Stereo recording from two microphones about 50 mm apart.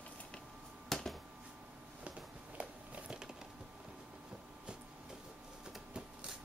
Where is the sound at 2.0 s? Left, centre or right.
Right.